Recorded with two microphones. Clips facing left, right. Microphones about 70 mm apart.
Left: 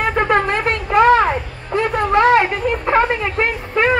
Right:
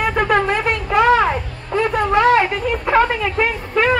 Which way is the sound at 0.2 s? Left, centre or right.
Left.